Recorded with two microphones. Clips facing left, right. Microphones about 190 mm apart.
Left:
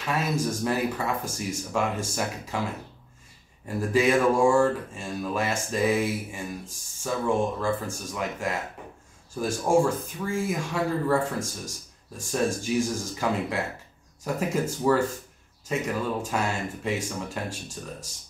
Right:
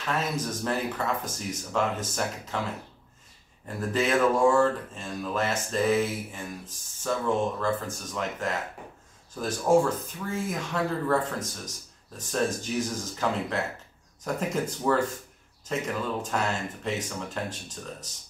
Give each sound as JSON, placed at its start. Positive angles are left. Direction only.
{"t": 0.0, "sound": "speech", "side_deg": 10}
{"t": 3.6, "sound": "speech", "side_deg": 10}